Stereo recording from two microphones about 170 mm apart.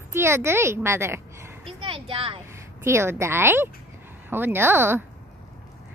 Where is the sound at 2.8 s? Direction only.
15° right (ahead or behind).